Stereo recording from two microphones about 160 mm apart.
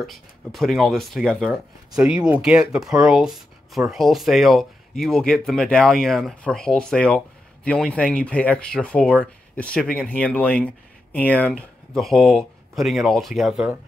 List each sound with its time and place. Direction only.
0.0 s speech: centre (ahead or behind)